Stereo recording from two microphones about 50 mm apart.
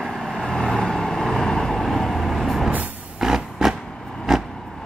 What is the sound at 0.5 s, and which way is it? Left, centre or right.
Vehicle, centre.